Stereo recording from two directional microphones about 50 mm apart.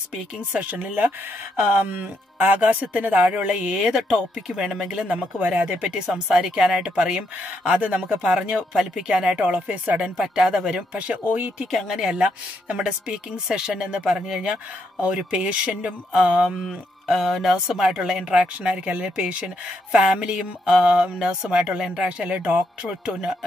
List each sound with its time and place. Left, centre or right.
0.5 s speech: right; by 5.2 s centre
5.5 s speech: right
9.4 s speech: right
11.2 s speech: right
12.0 s speech: centre
16.4 s speech: centre